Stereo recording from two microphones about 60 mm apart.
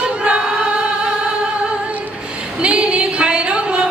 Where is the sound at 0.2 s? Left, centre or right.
Centre.